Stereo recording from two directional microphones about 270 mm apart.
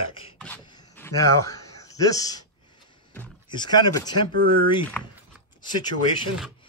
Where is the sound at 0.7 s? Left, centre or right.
Centre.